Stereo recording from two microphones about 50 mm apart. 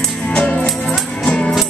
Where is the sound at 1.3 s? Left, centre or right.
Left.